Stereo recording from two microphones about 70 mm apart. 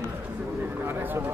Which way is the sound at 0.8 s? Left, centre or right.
Right.